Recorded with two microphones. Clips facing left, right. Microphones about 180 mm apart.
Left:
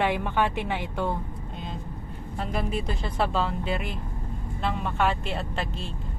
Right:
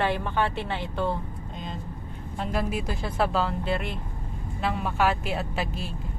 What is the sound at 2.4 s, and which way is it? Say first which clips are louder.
Speech: right 1 dB; centre (ahead or behind).